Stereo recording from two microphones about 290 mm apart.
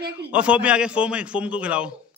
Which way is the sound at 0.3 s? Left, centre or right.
Centre.